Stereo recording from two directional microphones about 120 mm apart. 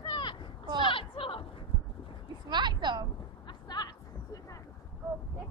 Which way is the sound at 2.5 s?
40° right (ahead or behind).